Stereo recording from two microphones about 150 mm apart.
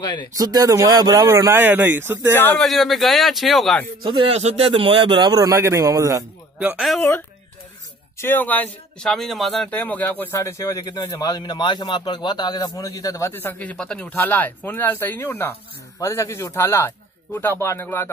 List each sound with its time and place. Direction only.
0.0 s speech: 30° left (ahead or behind)
0.3 s speech: 25° right (ahead or behind)
2.3 s speech: 10° left (ahead or behind)
2.6 s speech: centre (ahead or behind)
4.0 s a man's voice: 35° right (ahead or behind)
7.0 s speech: 15° left (ahead or behind)